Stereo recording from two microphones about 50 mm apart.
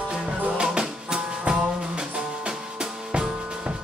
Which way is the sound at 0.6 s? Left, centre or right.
Centre.